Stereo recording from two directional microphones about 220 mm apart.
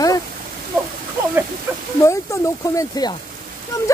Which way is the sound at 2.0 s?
15° left (ahead or behind).